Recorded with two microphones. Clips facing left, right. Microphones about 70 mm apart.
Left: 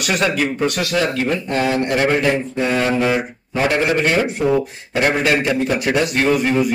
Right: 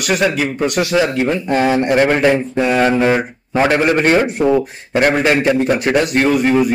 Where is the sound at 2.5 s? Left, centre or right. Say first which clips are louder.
Right 4 dB; right.